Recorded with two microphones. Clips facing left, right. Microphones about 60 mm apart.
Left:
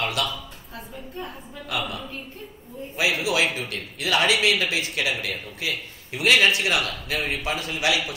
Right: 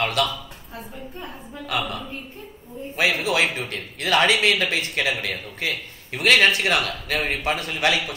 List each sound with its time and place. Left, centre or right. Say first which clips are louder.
0.0 s a man's voice: right 4 dB; right
1.7 s a man's voice: right 2 dB; right